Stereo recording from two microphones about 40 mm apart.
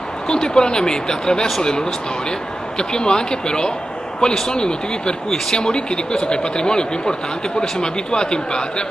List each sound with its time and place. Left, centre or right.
0.3 s speech: centre